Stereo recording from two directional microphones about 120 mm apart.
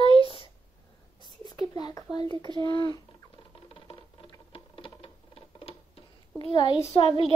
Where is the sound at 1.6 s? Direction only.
35° left (ahead or behind).